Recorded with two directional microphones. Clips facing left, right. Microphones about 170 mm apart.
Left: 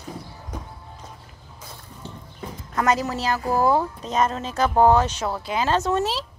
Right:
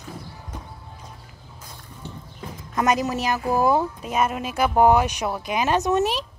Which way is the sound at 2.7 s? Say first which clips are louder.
Right 1 dB; 15° right (ahead or behind).